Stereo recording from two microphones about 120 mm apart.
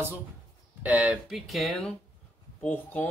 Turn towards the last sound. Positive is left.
turn(degrees=15)  # may be behind; listen again after turning